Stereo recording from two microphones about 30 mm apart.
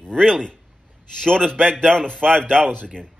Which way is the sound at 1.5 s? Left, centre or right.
Left.